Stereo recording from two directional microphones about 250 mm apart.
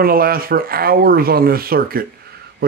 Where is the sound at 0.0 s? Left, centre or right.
Right.